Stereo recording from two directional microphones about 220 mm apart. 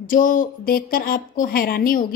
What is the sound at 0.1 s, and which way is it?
A woman's voice, 40° left (ahead or behind).